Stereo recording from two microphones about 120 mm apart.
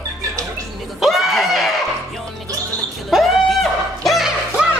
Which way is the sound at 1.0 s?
Centre (ahead or behind).